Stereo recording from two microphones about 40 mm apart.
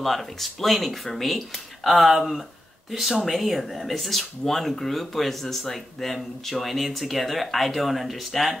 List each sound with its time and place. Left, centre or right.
0.0 s speech: centre